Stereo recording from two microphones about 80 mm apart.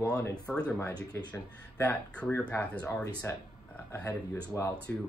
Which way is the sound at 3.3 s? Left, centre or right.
Left.